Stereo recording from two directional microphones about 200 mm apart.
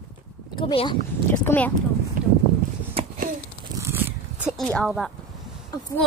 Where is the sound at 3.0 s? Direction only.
30° right (ahead or behind).